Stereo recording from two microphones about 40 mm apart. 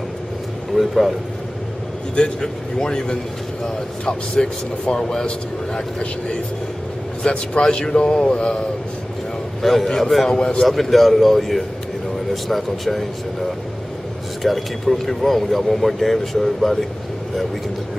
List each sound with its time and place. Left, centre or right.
0.7 s a man's voice: centre
2.8 s speech: centre
9.6 s a man's voice: centre
10.3 s speech: left
10.6 s a man's voice: centre
14.4 s a man's voice: centre